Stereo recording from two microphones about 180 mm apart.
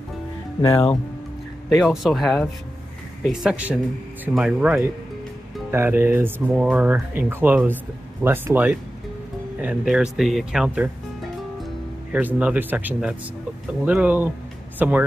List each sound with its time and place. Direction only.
0.6 s speech: 25° left (ahead or behind)
1.8 s speech: centre (ahead or behind)
12.1 s speech: 10° right (ahead or behind)